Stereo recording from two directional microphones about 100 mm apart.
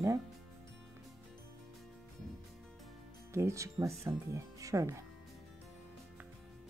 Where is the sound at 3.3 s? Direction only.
30° right (ahead or behind).